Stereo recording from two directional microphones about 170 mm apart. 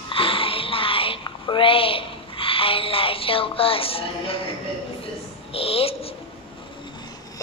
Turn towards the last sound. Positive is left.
turn(degrees=35)  # may be behind; listen again after turning